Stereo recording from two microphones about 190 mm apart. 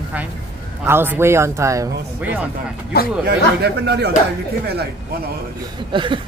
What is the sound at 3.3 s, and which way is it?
Speech, 60° right (ahead or behind).